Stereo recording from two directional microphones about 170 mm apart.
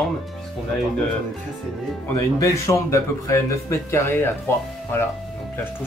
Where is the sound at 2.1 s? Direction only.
20° left (ahead or behind).